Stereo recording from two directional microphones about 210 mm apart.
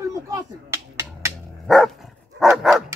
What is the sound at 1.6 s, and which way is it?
Dog, centre (ahead or behind).